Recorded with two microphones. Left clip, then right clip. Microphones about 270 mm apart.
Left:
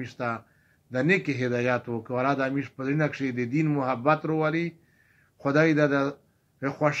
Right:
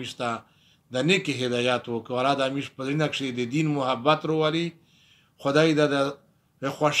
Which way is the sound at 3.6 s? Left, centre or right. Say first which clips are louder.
Right 1 dB; centre.